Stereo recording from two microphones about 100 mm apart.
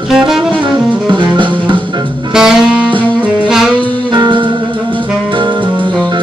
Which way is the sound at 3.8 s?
50° right (ahead or behind).